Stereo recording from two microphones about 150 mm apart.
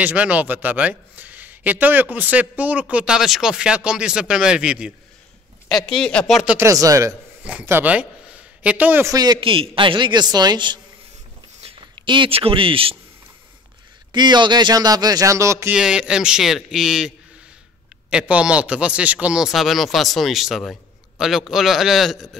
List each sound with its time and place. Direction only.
0.0 s speech: 10° right (ahead or behind)
6.5 s speech: 20° right (ahead or behind); by 12.9 s 35° right (ahead or behind)
14.1 s speech: 30° right (ahead or behind)
15.7 s speech: 5° right (ahead or behind)
18.1 s speech: 5° right (ahead or behind)